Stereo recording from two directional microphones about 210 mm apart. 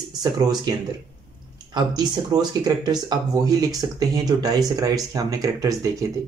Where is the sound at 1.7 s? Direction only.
20° right (ahead or behind).